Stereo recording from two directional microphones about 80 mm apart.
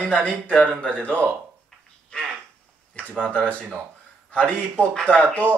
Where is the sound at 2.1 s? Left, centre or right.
Centre.